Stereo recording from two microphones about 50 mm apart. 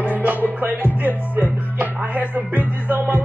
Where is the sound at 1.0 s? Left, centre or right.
Right.